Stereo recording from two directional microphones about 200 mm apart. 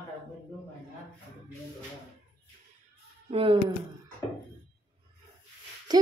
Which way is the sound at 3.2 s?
25° right (ahead or behind).